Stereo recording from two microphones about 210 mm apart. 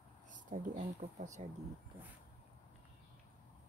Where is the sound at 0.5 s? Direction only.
35° right (ahead or behind).